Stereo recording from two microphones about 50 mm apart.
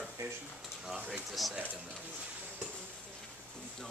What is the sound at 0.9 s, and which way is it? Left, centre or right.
Speech, right.